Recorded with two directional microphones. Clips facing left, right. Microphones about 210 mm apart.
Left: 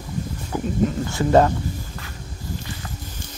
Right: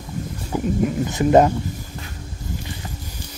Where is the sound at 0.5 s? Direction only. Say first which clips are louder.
Right 3 dB; 10° right (ahead or behind).